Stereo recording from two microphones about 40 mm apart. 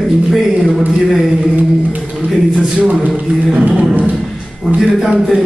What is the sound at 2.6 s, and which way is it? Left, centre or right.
Speech, right.